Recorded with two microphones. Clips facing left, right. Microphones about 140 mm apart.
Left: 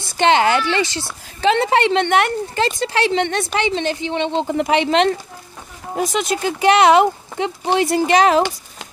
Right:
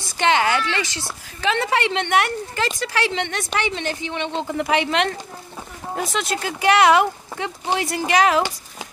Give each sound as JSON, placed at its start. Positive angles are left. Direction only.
{"t": 0.2, "sound": "speech", "side_deg": 30}